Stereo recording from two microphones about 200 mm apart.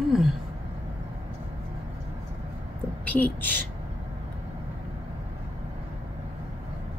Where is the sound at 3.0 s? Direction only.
10° left (ahead or behind).